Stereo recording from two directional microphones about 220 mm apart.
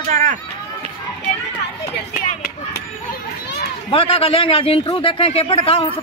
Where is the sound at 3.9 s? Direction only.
25° left (ahead or behind).